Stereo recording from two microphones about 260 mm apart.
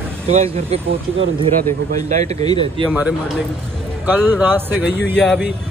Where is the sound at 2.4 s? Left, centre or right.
Centre.